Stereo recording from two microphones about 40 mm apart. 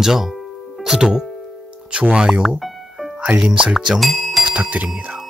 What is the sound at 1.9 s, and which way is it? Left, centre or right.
Speech, right.